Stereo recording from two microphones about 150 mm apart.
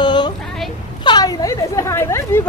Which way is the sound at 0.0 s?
30° left (ahead or behind).